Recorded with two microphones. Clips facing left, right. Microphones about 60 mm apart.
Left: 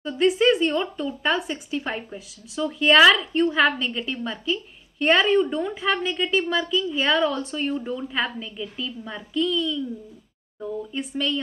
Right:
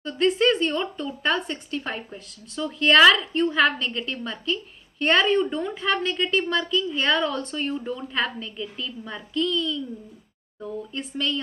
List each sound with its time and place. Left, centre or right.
0.0 s speech: centre